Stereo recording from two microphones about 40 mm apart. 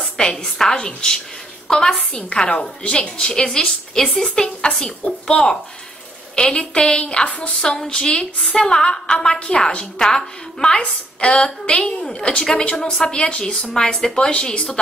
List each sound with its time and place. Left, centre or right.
0.4 s a woman's voice: centre; by 3.1 s left
3.2 s a woman's voice: centre
7.6 s a woman's voice: centre